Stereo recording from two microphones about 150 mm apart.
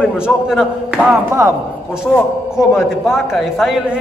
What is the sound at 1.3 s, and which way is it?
Speech, 15° right (ahead or behind).